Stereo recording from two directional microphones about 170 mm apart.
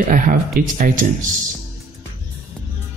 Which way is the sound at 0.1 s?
55° right (ahead or behind).